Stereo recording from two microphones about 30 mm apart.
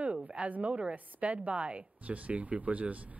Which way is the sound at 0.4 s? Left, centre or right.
Right.